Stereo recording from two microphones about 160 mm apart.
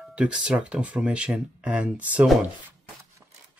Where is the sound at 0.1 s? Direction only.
5° right (ahead or behind).